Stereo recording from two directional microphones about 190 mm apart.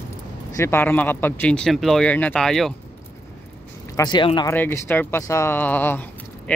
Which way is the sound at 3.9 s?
25° left (ahead or behind).